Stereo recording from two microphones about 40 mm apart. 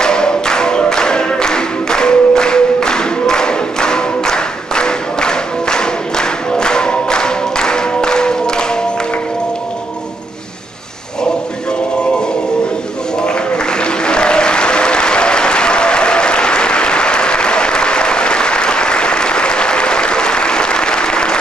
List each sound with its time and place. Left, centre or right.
0.0 s music: centre
14.0 s applause: left